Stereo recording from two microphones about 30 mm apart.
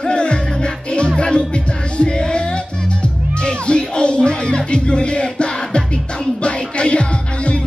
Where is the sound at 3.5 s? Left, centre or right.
Left.